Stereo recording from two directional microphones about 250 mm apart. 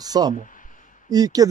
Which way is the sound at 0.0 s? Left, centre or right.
Centre.